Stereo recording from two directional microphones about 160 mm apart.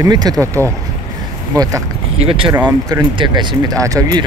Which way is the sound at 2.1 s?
35° right (ahead or behind).